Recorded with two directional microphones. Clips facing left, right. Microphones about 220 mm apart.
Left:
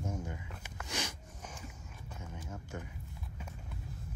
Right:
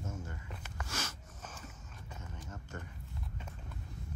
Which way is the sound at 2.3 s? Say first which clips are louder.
Left 3 dB; 10° left (ahead or behind).